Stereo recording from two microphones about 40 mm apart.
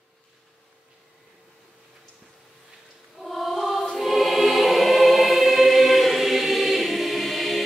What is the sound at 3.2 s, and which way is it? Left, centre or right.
Choir, centre.